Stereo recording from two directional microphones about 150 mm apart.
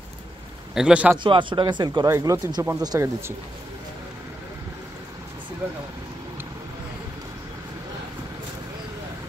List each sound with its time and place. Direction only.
0.7 s a man's voice: 5° right (ahead or behind)
1.2 s speech: 35° right (ahead or behind); by 3.3 s 15° right (ahead or behind)